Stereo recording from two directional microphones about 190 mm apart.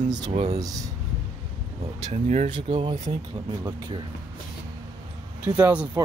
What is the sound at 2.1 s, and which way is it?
Speech, 40° right (ahead or behind).